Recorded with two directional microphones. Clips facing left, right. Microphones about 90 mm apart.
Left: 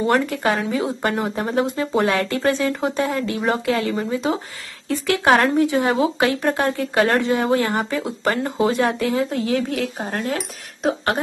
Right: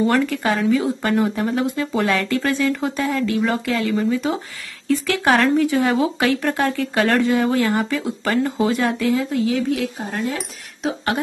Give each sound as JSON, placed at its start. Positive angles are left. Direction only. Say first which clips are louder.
{"t": 0.0, "sound": "speech", "louder": "right 1 dB", "side_deg": 25}
{"t": 9.3, "sound": "speech", "louder": "right 2 dB", "side_deg": 45}